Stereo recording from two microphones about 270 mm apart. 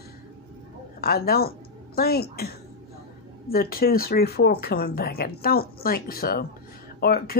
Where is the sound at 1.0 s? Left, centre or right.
Left.